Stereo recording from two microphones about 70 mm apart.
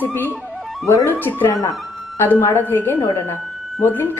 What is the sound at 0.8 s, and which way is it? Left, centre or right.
Speech, left.